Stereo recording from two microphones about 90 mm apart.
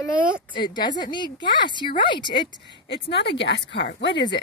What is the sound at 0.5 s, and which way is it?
Speech, 55° left (ahead or behind).